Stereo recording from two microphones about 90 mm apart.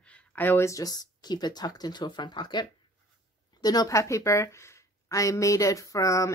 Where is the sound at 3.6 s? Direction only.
45° left (ahead or behind).